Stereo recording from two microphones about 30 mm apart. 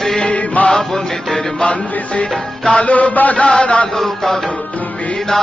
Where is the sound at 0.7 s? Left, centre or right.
Centre.